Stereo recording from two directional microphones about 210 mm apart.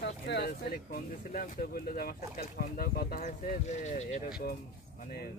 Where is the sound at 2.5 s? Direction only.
40° left (ahead or behind).